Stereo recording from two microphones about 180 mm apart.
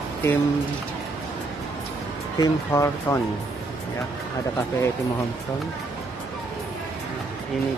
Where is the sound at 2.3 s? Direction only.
15° left (ahead or behind).